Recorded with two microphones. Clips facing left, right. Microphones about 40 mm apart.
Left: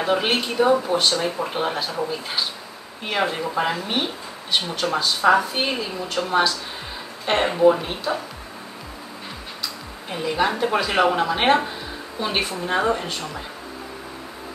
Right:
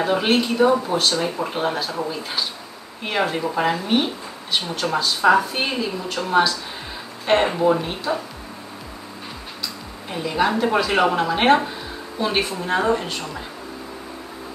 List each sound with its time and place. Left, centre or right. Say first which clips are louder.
0.0 s speech: right 2 dB; centre
9.6 s speech: even; centre